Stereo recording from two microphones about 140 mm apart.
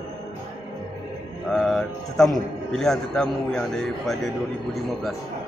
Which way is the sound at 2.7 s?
5° left (ahead or behind).